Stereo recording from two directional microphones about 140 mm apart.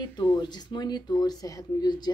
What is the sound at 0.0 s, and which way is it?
Speech, 30° left (ahead or behind).